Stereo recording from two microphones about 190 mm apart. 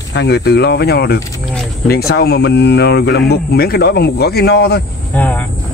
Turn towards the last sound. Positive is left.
turn(degrees=10)  # may be behind; listen again after turning